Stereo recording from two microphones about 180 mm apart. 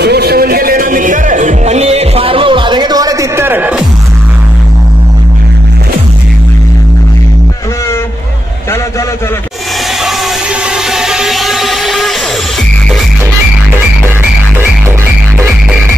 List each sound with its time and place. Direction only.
0.0 s music: 60° right (ahead or behind); by 3.8 s 10° right (ahead or behind)
10.9 s music: centre (ahead or behind)